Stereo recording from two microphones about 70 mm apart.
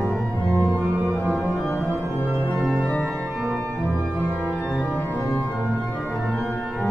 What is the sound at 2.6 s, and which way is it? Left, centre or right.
Organ, centre.